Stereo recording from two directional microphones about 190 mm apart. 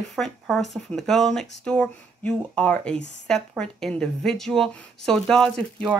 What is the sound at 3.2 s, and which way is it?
A woman's voice, 5° left (ahead or behind).